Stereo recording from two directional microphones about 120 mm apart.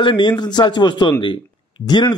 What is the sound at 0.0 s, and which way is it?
A man's voice, 40° left (ahead or behind).